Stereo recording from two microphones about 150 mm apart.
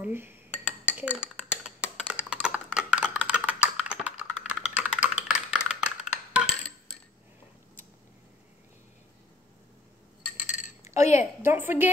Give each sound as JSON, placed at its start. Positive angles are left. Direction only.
{"t": 0.0, "sound": "a woman's voice", "side_deg": -15}
{"t": 0.8, "sound": "computer keyboard", "side_deg": -10}
{"t": 4.5, "sound": "typing", "side_deg": -5}
{"t": 10.4, "sound": "cutlery", "side_deg": 55}
{"t": 11.0, "sound": "a woman's voice", "side_deg": 50}
{"t": 11.4, "sound": "a woman's voice", "side_deg": -15}